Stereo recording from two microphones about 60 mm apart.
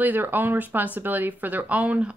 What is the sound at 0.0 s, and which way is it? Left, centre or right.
Speech, right.